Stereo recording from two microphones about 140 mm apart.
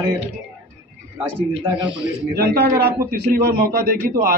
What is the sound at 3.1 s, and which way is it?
A man's voice, 90° right.